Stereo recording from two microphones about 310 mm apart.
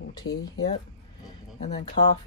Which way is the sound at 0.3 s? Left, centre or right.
Left.